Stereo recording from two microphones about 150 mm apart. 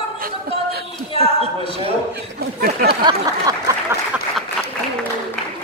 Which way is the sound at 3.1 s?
25° right (ahead or behind).